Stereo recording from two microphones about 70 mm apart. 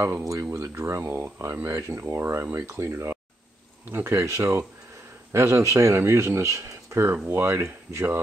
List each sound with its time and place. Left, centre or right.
0.0 s speech: right